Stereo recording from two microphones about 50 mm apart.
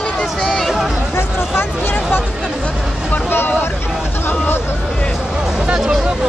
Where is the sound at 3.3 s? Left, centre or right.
Left.